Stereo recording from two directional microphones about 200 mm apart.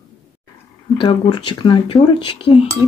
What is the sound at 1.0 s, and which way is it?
Speech, 20° left (ahead or behind).